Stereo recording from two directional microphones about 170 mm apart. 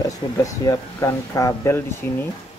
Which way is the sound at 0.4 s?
15° left (ahead or behind).